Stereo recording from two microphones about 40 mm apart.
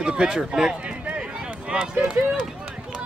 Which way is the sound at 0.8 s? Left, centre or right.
Right.